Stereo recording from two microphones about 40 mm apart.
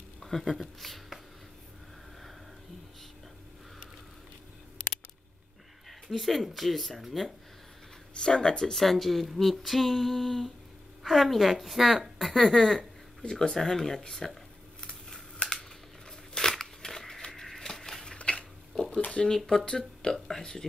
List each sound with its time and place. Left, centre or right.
0.2 s speech: centre
5.9 s speech: centre
8.1 s speech: centre
8.7 s speech: centre
14.8 s scissors: centre
16.3 s a sound: centre
18.0 s dishes: left
19.1 s speech: centre